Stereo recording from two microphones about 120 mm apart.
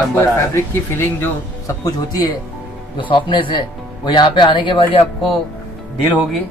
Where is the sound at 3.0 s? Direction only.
45° left (ahead or behind).